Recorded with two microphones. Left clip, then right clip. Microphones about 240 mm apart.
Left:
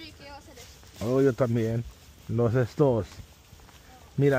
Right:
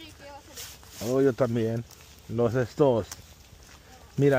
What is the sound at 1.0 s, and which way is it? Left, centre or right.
Speech, centre.